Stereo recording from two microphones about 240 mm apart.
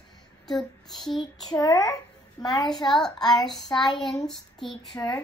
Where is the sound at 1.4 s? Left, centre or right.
Centre.